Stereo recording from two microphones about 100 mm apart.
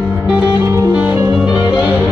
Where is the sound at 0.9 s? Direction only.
15° right (ahead or behind).